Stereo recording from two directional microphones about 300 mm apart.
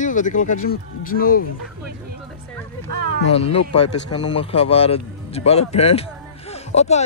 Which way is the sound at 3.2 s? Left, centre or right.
Centre.